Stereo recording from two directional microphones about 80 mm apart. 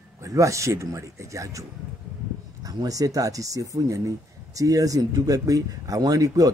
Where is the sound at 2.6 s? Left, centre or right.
Right.